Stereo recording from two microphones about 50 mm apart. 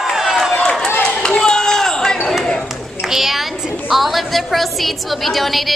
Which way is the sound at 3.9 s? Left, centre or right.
Centre.